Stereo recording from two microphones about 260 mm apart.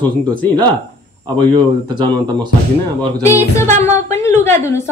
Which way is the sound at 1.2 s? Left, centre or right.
Centre.